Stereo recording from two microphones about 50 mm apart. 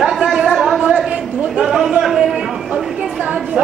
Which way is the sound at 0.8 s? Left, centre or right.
Centre.